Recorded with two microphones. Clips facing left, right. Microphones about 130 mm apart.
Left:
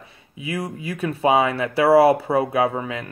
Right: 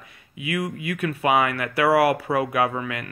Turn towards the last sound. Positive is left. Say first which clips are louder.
# left 2 dB
turn(degrees=30)  # may be behind; listen again after turning